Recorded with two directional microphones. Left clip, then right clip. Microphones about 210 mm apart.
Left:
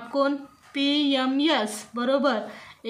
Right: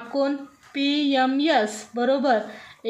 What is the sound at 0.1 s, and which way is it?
Speech, 25° left (ahead or behind).